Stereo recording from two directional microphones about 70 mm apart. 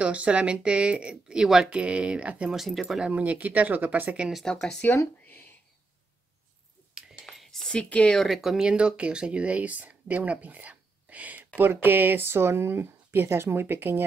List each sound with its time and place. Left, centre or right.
0.0 s speech: centre
2.5 s speech: centre
3.1 s speech: right
4.5 s speech: centre
7.2 s a sound: centre
8.2 s speech: centre
8.6 s speech: centre; by 14.0 s right